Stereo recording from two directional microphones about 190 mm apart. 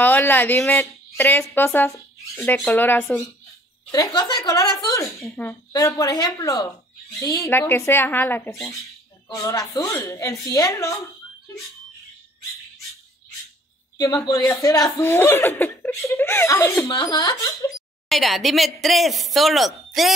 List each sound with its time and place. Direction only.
0.0 s speech: 10° left (ahead or behind)
13.9 s speech: 20° left (ahead or behind)
17.7 s a woman's voice: centre (ahead or behind)